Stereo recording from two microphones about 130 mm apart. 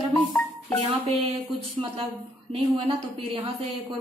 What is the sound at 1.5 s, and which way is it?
Speech, 45° right (ahead or behind).